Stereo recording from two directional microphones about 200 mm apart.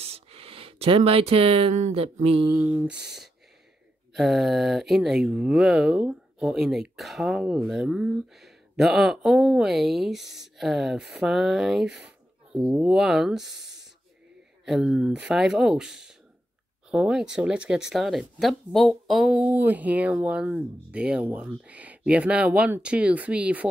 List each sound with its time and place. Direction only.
0.0 s speech: 30° right (ahead or behind)
2.6 s speech: 10° right (ahead or behind)
4.1 s speech: centre (ahead or behind)